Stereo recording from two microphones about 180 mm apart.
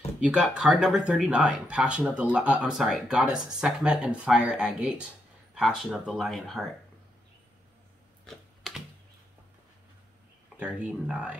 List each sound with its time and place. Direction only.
0.2 s speech: 5° right (ahead or behind)
8.3 s typing: centre (ahead or behind)
10.6 s speech: 5° right (ahead or behind)